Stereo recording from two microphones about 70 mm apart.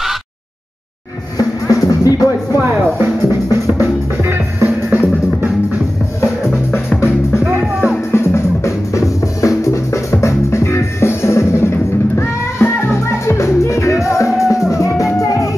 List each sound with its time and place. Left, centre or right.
1.7 s music: left
3.0 s music: right
7.0 s music: left
7.4 s music: centre
8.1 s music: left